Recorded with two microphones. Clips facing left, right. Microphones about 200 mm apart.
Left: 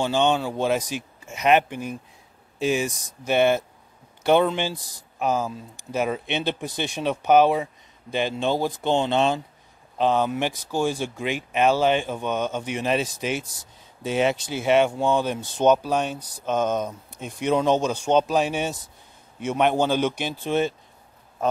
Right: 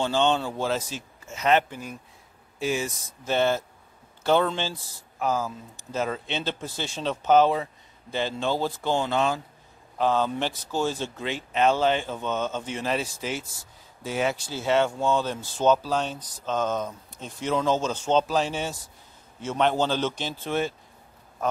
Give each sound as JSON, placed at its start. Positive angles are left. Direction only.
{"t": 0.0, "sound": "speech", "side_deg": 15}